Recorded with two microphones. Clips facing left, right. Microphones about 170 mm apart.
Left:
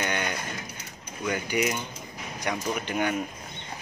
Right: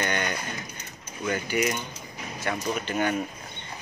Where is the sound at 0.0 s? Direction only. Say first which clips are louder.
Right 1 dB; 10° left (ahead or behind).